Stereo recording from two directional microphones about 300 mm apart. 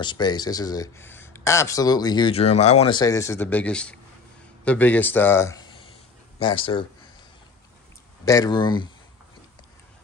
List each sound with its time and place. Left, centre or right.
0.0 s a man's voice: centre
8.3 s speech: centre